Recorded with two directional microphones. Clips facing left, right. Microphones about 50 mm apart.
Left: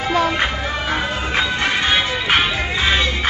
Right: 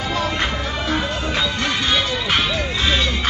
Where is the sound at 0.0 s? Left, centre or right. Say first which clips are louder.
Left 4 dB; left.